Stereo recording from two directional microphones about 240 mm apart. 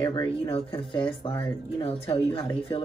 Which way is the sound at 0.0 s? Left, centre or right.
Centre.